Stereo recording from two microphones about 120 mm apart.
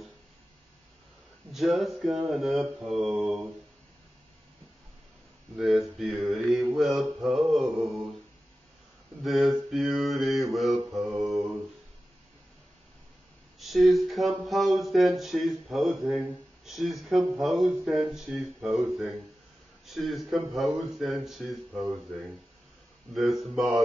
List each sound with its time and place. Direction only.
1.5 s speech: centre (ahead or behind)
5.6 s speech: centre (ahead or behind)
9.2 s speech: centre (ahead or behind)
13.6 s speech: centre (ahead or behind)